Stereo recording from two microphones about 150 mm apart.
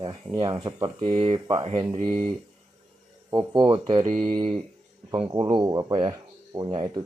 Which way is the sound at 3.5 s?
30° right (ahead or behind).